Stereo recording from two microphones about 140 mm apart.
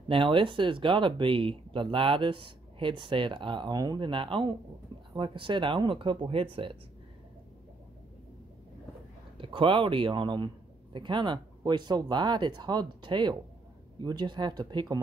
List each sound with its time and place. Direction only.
0.1 s speech: 40° right (ahead or behind)
9.4 s speech: 40° right (ahead or behind)